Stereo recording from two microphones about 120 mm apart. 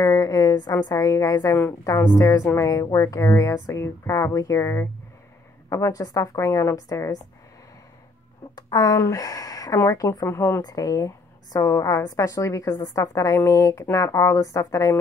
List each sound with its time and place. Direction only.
0.0 s a sound: 30° left (ahead or behind)
0.8 s a woman's voice: 30° left (ahead or behind)
8.5 s a woman's voice: 30° left (ahead or behind)
10.6 s a woman's voice: 35° left (ahead or behind)